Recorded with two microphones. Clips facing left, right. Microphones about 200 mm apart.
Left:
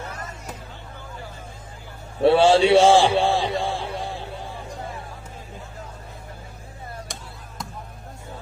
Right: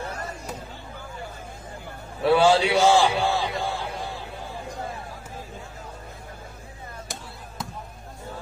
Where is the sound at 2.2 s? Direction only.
30° left (ahead or behind).